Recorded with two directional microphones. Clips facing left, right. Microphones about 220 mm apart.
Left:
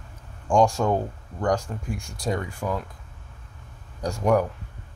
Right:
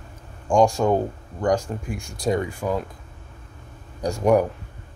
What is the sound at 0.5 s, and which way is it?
Speech, 15° right (ahead or behind).